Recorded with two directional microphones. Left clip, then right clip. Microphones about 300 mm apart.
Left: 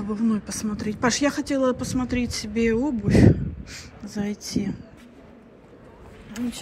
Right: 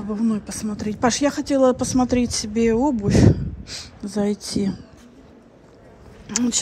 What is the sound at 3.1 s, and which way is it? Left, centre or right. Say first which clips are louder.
Speech: left 1 dB; left.